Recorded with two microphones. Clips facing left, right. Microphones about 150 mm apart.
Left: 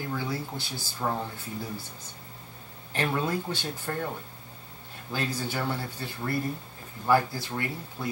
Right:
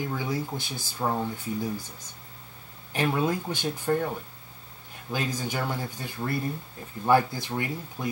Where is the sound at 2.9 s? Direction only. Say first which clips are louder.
Right 2 dB; 15° right (ahead or behind).